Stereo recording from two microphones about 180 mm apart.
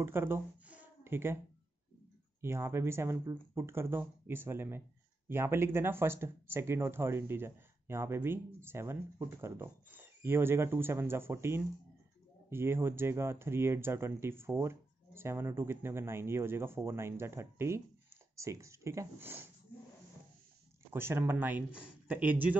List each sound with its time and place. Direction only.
0.0 s speech: 15° right (ahead or behind)
2.4 s speech: 15° right (ahead or behind)
20.9 s speech: 15° right (ahead or behind)